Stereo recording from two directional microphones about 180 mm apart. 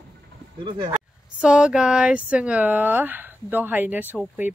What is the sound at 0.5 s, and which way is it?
Speech, 25° right (ahead or behind).